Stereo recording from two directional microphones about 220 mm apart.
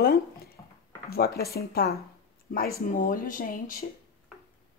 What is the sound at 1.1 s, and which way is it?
Speech, 45° left (ahead or behind).